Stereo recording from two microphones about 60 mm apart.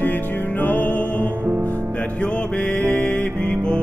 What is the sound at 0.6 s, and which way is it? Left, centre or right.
Music, left.